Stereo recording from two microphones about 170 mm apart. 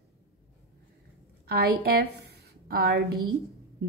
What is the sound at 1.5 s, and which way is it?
A woman's voice, 65° right (ahead or behind).